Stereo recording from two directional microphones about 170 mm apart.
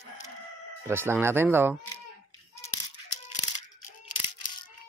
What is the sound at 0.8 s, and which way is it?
Speech, 15° right (ahead or behind).